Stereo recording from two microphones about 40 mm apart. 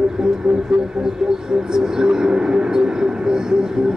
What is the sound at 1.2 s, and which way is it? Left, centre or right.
Vehicle, centre.